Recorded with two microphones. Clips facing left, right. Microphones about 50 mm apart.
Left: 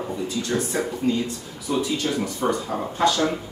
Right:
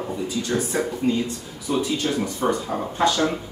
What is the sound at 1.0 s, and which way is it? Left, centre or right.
Speech, centre.